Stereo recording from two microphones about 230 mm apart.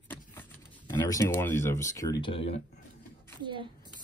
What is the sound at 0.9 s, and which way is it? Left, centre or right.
Speech, centre.